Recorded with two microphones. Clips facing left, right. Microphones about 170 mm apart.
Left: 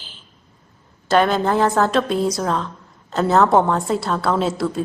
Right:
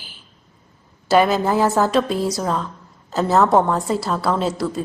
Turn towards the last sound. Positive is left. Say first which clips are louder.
# left 1 dB
turn(degrees=0)  # may be behind; listen again after turning